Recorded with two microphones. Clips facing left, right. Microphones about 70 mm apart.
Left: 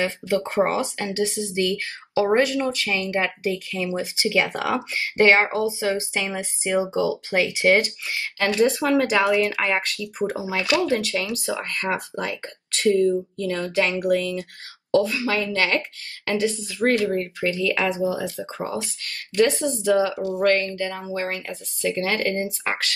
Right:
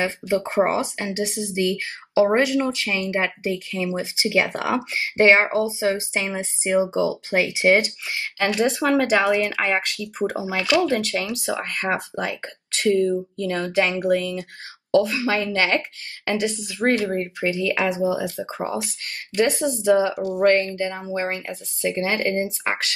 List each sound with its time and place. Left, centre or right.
0.0 s speech: right